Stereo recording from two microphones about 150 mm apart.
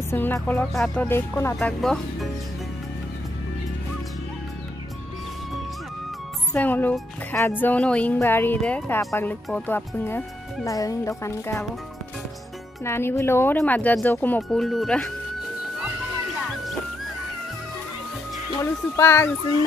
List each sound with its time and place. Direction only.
0.1 s speech: 15° left (ahead or behind)
0.7 s speech: centre (ahead or behind)
1.0 s speech: 15° left (ahead or behind)
1.6 s speech: 5° left (ahead or behind)
6.5 s speech: 10° left (ahead or behind)
12.8 s speech: 15° left (ahead or behind)
14.6 s speech: centre (ahead or behind)
18.6 s speech: 15° left (ahead or behind)